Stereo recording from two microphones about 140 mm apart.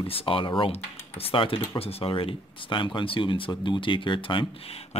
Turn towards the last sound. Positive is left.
turn(degrees=40)  # may be behind; listen again after turning